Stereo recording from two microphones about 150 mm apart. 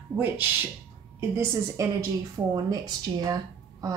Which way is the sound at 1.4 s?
20° right (ahead or behind).